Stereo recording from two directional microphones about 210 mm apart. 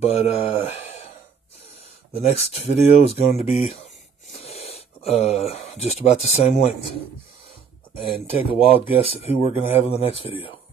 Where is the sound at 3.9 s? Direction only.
Centre (ahead or behind).